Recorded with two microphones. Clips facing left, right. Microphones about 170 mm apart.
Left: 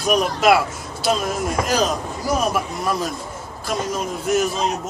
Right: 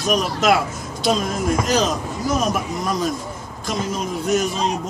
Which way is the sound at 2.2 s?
10° left (ahead or behind).